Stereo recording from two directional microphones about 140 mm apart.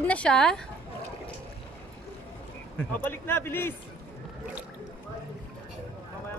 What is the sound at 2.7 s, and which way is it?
Speech, 15° left (ahead or behind).